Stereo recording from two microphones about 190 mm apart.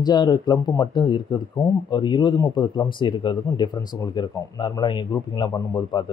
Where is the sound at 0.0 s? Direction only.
20° left (ahead or behind).